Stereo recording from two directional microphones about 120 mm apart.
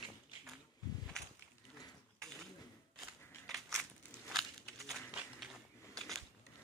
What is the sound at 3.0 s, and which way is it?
Crushing, centre (ahead or behind).